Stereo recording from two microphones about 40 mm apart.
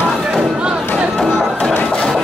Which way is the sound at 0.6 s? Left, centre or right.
Right.